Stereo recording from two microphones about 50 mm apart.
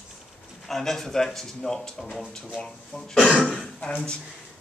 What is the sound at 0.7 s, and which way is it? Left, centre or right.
Speech, centre.